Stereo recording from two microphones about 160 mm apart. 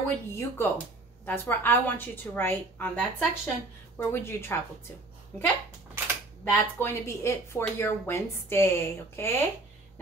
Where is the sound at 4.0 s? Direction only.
15° left (ahead or behind).